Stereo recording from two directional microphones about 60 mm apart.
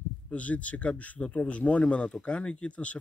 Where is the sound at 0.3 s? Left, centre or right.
Left.